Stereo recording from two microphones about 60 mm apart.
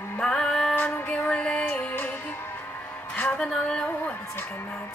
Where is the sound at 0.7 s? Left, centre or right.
Left.